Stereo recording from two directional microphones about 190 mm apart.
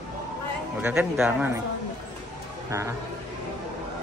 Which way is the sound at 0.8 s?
10° right (ahead or behind).